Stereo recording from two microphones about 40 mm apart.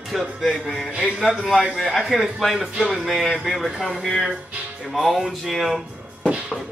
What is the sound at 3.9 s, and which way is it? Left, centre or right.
A man's voice, centre.